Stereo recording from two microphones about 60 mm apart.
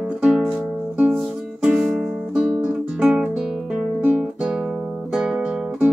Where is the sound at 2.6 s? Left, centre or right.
Centre.